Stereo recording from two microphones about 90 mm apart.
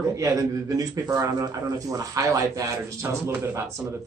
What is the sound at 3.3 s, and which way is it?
Speech, 20° right (ahead or behind).